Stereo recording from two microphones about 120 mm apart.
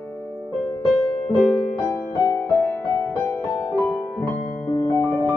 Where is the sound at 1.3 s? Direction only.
10° left (ahead or behind).